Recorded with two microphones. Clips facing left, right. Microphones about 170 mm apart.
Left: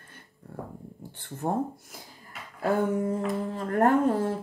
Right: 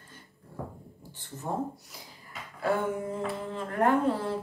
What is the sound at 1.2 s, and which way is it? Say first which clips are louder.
Speech: left 4 dB; 55° left (ahead or behind).